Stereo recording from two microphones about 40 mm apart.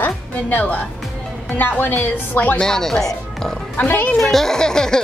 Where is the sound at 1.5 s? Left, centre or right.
Left.